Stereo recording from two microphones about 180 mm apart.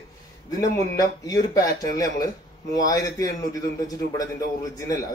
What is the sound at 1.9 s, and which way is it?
A man's voice, 20° left (ahead or behind).